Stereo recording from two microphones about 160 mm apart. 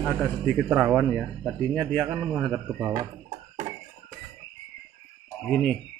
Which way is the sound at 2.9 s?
30° right (ahead or behind).